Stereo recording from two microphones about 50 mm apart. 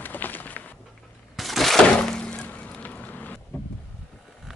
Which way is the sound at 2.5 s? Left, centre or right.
Left.